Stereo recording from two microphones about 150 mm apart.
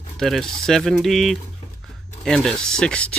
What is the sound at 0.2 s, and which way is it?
Speech, centre (ahead or behind).